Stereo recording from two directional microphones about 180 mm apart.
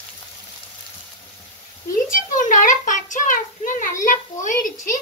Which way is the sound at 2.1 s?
45° left (ahead or behind).